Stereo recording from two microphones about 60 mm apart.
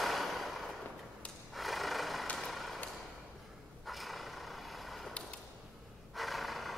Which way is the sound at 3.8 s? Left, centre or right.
Centre.